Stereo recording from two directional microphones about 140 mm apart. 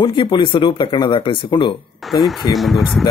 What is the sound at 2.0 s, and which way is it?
Speech, centre (ahead or behind).